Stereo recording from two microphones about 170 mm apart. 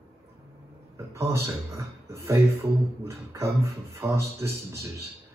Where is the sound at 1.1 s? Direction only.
15° right (ahead or behind).